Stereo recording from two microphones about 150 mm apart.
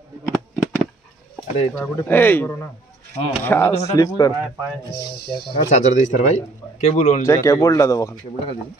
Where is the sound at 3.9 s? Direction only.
25° left (ahead or behind).